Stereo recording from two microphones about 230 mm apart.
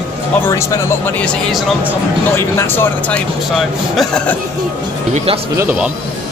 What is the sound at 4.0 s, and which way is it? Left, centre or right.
Speech, centre.